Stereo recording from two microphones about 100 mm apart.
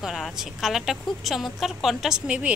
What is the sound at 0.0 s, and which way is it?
A woman's voice, 5° right (ahead or behind).